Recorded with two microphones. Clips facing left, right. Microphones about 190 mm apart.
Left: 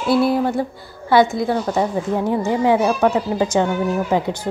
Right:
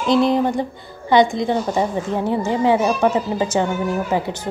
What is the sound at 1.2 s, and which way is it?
Speech, 5° left (ahead or behind).